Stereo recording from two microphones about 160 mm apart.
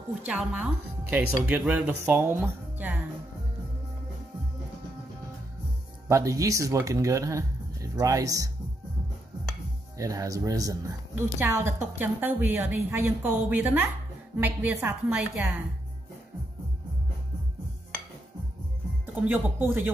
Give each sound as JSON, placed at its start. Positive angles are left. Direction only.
{"t": 0.2, "sound": "a woman's voice", "side_deg": -10}
{"t": 6.0, "sound": "speech", "side_deg": -20}
{"t": 9.9, "sound": "a woman's voice", "side_deg": -20}
{"t": 19.2, "sound": "a woman's voice", "side_deg": -10}